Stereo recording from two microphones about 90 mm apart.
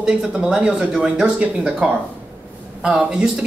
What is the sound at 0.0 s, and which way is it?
Speech, 10° right (ahead or behind).